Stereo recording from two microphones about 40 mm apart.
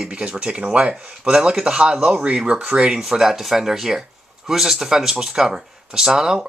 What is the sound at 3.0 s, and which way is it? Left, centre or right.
Speech, centre.